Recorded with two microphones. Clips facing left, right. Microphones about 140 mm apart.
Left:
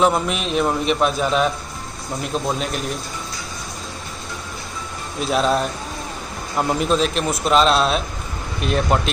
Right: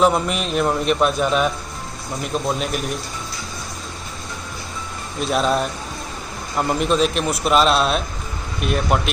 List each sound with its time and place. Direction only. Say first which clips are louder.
0.0 s a man's voice: right 1 dB; centre (ahead or behind)
5.2 s a man's voice: even; centre (ahead or behind)